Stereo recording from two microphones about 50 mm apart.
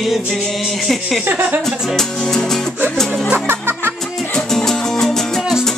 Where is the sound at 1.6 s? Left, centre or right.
Centre.